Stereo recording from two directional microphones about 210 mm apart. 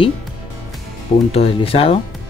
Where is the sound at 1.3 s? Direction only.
30° left (ahead or behind).